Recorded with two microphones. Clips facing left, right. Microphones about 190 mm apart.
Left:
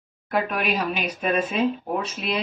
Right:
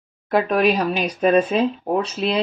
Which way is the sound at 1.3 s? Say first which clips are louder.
Right 2 dB; 35° right (ahead or behind).